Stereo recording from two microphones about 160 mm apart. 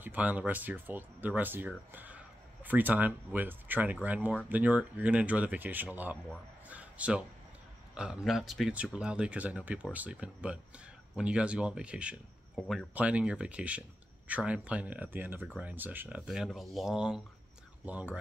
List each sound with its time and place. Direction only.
0.0 s speech: 10° right (ahead or behind)
6.7 s a sound: 10° right (ahead or behind)
7.9 s speech: 5° right (ahead or behind)